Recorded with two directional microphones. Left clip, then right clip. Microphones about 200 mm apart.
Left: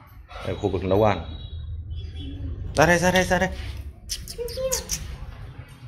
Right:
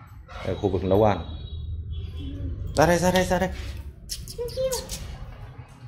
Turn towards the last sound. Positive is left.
turn(degrees=10)  # may be behind; listen again after turning